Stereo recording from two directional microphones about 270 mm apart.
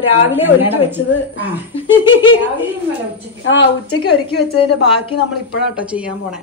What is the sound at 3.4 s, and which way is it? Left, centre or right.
Speech, left.